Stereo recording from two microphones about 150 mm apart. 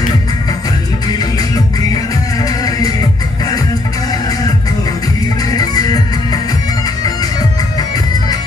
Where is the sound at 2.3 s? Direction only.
25° left (ahead or behind).